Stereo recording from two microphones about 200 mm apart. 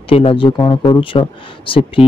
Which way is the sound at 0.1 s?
25° left (ahead or behind).